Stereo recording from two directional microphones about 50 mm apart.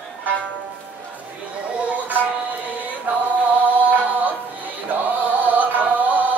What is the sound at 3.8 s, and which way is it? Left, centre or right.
Music, right.